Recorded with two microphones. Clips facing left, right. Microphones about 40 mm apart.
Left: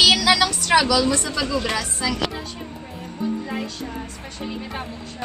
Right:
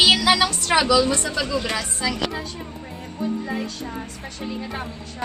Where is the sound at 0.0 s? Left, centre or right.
Right.